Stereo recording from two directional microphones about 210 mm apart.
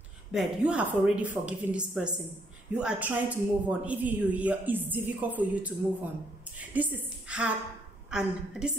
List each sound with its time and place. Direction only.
0.3 s a woman's voice: 5° right (ahead or behind)